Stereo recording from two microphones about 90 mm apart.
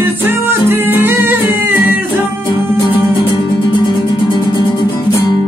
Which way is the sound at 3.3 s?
60° left (ahead or behind).